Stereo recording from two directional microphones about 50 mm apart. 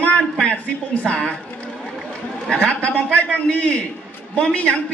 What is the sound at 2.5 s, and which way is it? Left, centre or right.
A man's voice, centre.